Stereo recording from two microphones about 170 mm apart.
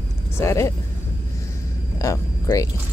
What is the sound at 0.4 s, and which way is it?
Speech, 15° left (ahead or behind).